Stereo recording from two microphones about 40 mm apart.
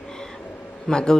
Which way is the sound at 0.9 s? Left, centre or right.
Centre.